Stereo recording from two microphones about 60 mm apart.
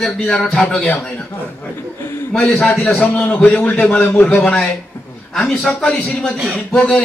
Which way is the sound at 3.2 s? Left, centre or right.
Left.